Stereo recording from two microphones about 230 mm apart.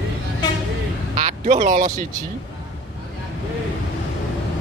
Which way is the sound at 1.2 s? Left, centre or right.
Right.